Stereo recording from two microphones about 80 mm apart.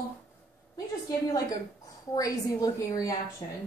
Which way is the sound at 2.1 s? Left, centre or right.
Left.